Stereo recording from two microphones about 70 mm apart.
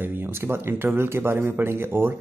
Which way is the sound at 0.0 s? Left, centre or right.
Right.